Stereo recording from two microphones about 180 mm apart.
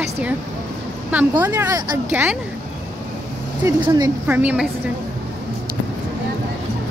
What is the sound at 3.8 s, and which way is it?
Speech, 20° right (ahead or behind).